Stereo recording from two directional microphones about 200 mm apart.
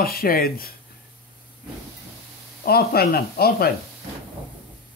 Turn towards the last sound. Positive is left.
turn(degrees=50)  # may be behind; listen again after turning